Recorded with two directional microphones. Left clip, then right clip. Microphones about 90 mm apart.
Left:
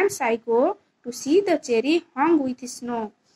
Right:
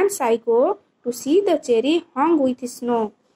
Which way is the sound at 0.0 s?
25° right (ahead or behind).